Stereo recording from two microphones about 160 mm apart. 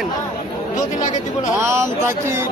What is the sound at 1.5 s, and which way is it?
Speech, 15° right (ahead or behind).